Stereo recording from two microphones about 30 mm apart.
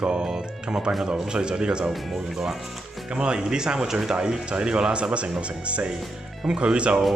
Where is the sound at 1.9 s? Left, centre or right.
Centre.